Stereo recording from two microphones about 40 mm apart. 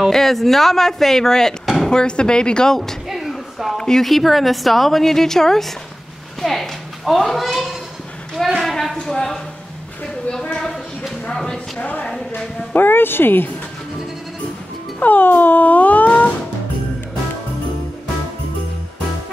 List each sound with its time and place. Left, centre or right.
0.1 s speech: centre
1.9 s speech: left
2.7 s speech: centre
3.1 s a sound: centre
3.7 s speech: centre
4.0 s a woman's voice: centre
6.4 s a sound: centre
7.2 s a woman's voice: centre
8.6 s a sound: centre
9.0 s speech: centre
10.3 s a sound: centre
12.7 s speech: left
15.0 s speech: left